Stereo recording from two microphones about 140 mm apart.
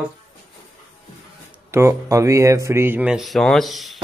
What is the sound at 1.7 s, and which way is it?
Speech, 20° right (ahead or behind).